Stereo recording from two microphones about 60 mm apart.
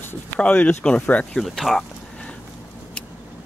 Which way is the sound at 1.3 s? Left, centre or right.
Centre.